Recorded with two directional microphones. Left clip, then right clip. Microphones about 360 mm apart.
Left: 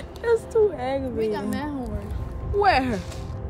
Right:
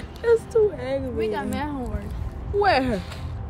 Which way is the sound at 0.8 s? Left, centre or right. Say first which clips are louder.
Left 1 dB; centre.